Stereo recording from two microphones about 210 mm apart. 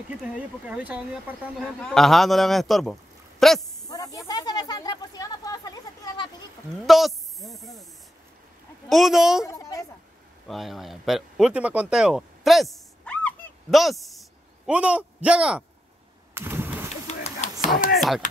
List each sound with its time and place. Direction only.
0.7 s speech: 5° right (ahead or behind)
3.8 s snake: 15° left (ahead or behind)
6.9 s speech: centre (ahead or behind)
8.8 s speech: centre (ahead or behind)
9.5 s a woman's voice: 15° left (ahead or behind)
10.5 s speech: centre (ahead or behind)
16.3 s a sound: 10° right (ahead or behind)
16.9 s a sound: 30° left (ahead or behind)
17.9 s speech: centre (ahead or behind)